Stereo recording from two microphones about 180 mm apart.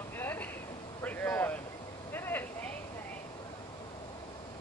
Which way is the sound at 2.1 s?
10° left (ahead or behind).